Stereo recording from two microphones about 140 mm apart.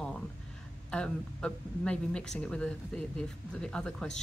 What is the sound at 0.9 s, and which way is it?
Speech, 5° left (ahead or behind).